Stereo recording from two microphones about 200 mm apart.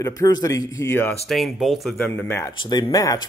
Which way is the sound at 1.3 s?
Centre (ahead or behind).